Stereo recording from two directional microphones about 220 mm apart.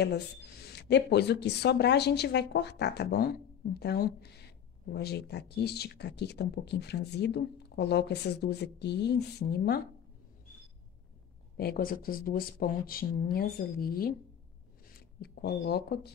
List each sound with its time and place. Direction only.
0.0 s speech: 45° left (ahead or behind)
11.5 s speech: 45° left (ahead or behind)